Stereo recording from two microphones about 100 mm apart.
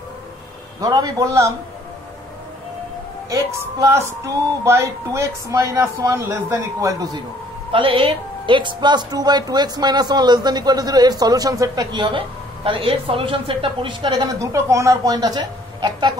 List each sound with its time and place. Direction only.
0.7 s a woman's voice: 40° right (ahead or behind)
3.8 s a woman's voice: 30° right (ahead or behind)
7.7 s speech: 65° right (ahead or behind)
12.6 s speech: 60° right (ahead or behind)
14.4 s a woman's voice: 30° right (ahead or behind)